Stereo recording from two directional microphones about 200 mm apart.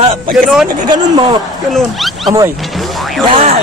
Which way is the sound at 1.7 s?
Centre (ahead or behind).